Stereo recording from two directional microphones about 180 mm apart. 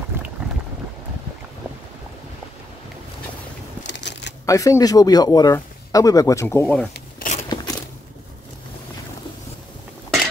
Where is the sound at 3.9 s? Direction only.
75° left (ahead or behind).